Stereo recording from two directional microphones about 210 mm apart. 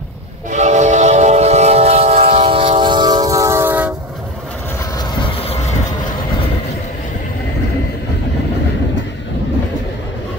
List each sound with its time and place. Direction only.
0.5 s train: 35° right (ahead or behind); by 3.9 s 10° right (ahead or behind)
4.9 s train: 20° left (ahead or behind)